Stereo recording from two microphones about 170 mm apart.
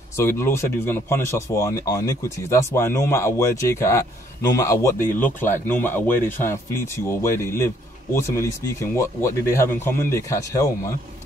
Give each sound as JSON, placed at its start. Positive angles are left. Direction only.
{"t": 0.1, "sound": "speech", "side_deg": 15}